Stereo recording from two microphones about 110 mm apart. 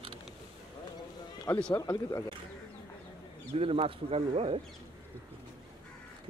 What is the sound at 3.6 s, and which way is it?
Speech, 60° right (ahead or behind).